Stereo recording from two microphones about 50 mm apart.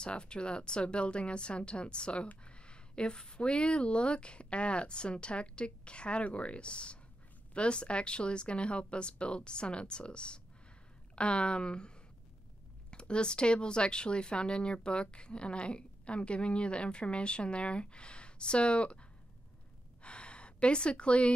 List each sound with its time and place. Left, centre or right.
0.0 s speech: centre
13.1 s speech: centre
20.0 s gasp: left